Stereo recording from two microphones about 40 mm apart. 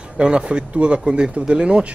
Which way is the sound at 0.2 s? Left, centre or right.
Right.